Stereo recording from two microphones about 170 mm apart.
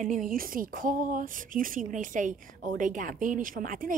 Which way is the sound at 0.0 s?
50° right (ahead or behind).